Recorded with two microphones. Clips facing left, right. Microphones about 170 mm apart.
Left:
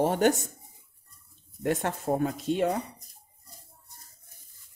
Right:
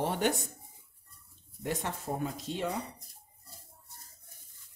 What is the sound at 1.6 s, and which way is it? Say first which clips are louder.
Speech: left 7 dB; 55° left (ahead or behind).